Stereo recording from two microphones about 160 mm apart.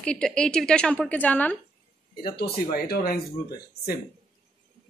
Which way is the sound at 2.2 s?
75° left (ahead or behind).